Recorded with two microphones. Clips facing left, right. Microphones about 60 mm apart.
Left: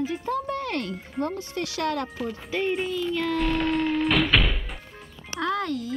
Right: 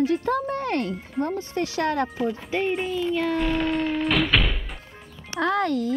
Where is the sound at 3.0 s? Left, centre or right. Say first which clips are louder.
Right 2 dB; centre.